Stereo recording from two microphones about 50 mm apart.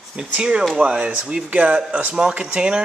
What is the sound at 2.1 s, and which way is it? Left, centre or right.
Speech, centre.